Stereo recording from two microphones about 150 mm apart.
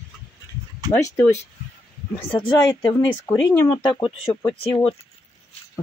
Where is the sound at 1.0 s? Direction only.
20° left (ahead or behind).